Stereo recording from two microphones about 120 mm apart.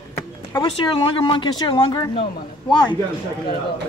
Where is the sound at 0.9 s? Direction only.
50° left (ahead or behind).